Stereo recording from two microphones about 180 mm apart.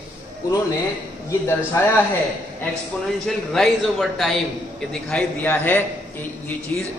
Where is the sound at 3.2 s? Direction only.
Centre (ahead or behind).